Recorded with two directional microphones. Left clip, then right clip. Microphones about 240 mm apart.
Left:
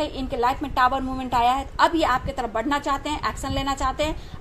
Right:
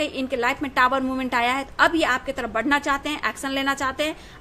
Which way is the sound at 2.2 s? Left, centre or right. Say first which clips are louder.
Right 1 dB; right.